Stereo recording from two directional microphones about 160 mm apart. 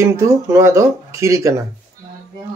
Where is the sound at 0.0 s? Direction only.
20° right (ahead or behind).